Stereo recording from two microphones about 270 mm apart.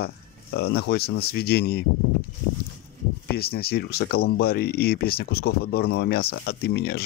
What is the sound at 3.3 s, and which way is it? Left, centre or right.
Speech, left.